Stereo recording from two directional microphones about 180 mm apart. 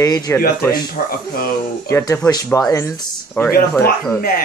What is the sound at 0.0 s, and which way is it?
Speech, 20° left (ahead or behind).